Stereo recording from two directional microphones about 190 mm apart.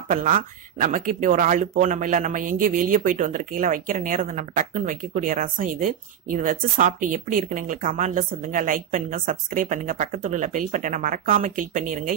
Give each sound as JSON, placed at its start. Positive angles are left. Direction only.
{"t": 0.1, "sound": "speech", "side_deg": -45}